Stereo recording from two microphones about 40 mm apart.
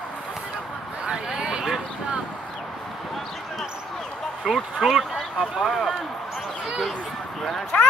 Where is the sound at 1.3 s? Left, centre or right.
Centre.